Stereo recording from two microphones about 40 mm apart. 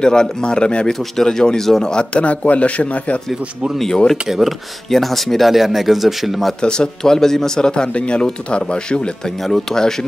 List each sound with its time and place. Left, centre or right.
0.0 s speech: left
0.9 s speech: centre
2.2 s speech: left
3.7 s speech: centre
4.3 s speech: centre
4.8 s speech: centre
6.6 s speech: centre
9.4 s speech: centre